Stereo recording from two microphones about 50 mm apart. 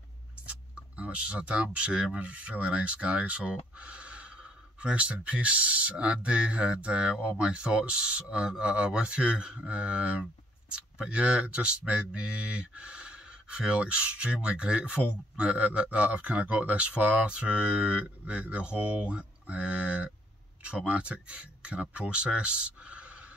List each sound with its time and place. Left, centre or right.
0.5 s speech: right
18.8 s speech: right
19.0 s speech: right